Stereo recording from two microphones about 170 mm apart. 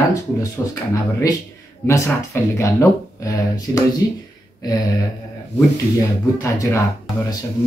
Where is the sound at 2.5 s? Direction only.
15° left (ahead or behind).